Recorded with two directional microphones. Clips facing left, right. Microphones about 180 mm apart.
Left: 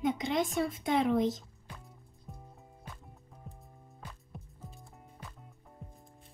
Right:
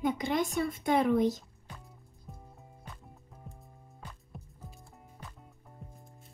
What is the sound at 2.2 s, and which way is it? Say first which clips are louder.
Music: even; centre (ahead or behind).